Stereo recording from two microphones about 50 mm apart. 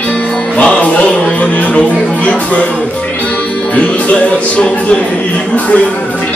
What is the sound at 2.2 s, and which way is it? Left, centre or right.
Music, left.